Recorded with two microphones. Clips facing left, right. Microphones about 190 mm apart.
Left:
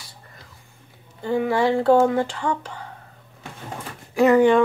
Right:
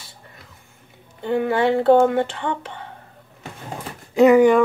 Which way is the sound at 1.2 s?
Centre (ahead or behind).